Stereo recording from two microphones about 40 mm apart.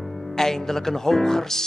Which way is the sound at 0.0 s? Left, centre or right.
Centre.